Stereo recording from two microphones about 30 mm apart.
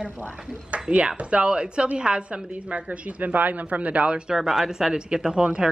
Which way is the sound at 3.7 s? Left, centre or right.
Right.